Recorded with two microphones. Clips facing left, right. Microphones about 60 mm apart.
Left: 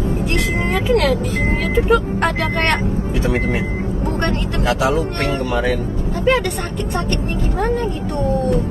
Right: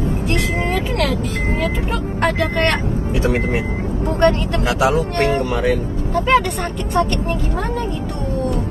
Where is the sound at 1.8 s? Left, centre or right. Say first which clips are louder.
Left 5 dB; left.